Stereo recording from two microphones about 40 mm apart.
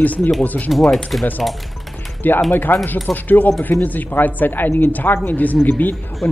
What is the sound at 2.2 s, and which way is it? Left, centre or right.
A woman's voice, left.